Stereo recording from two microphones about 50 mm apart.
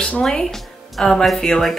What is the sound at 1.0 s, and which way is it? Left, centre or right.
Speech, centre.